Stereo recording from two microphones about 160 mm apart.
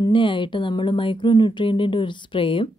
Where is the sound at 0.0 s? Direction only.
30° left (ahead or behind).